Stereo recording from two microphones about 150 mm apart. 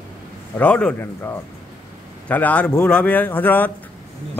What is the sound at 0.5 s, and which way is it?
A man's voice, 10° left (ahead or behind).